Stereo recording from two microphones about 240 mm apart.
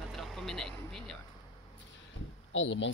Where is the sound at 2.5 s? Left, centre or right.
Left.